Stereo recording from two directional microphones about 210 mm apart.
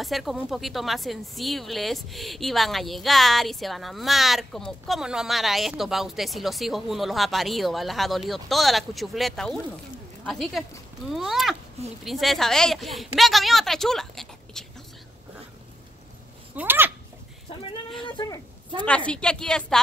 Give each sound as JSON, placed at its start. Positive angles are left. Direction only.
{"t": 0.0, "sound": "speech", "side_deg": 0}
{"t": 16.5, "sound": "speech", "side_deg": -10}
{"t": 18.0, "sound": "speech", "side_deg": 20}
{"t": 18.9, "sound": "speech", "side_deg": 5}